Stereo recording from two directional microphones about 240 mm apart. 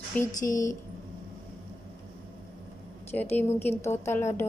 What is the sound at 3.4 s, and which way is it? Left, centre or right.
A woman's voice, centre.